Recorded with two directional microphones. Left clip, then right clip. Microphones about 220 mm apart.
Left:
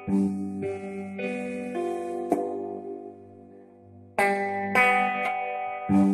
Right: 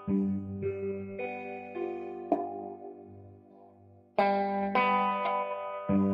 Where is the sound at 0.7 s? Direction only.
50° left (ahead or behind).